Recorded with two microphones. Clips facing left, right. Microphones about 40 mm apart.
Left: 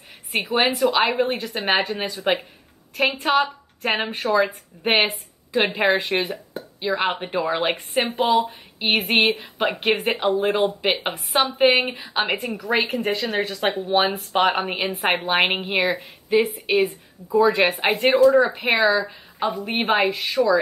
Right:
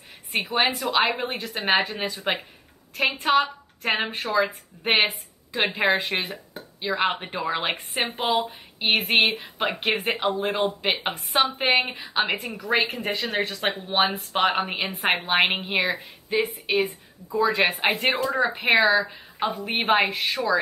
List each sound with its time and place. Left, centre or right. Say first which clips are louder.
0.6 s a woman's voice: left 3 dB; centre